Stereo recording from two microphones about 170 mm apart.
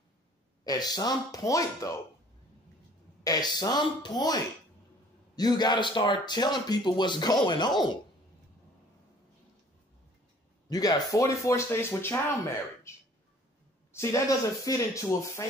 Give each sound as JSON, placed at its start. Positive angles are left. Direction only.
{"t": 0.7, "sound": "speech", "side_deg": 25}
{"t": 3.3, "sound": "speech", "side_deg": 25}
{"t": 10.7, "sound": "speech", "side_deg": 20}